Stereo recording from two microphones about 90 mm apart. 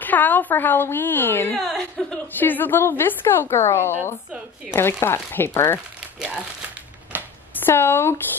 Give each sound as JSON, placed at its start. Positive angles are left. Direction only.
{"t": 0.0, "sound": "a woman's voice", "side_deg": 20}
{"t": 1.6, "sound": "a woman's voice", "side_deg": 0}
{"t": 2.3, "sound": "a woman's voice", "side_deg": 20}
{"t": 6.1, "sound": "crumpling", "side_deg": -5}
{"t": 7.1, "sound": "a sound", "side_deg": -20}
{"t": 7.5, "sound": "speech", "side_deg": 25}